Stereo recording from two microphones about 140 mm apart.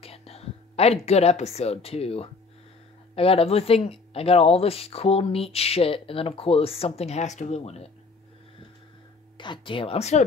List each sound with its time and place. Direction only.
0.0 s a woman's voice: 45° left (ahead or behind)
9.4 s speech: 35° left (ahead or behind)